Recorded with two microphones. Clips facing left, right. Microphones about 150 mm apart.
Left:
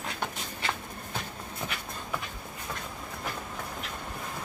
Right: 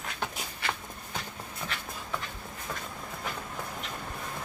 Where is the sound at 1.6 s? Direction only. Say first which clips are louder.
Left 1 dB; 20° left (ahead or behind).